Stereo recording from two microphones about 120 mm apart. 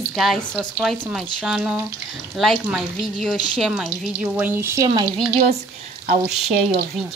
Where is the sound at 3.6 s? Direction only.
5° right (ahead or behind); by 4.9 s 20° right (ahead or behind).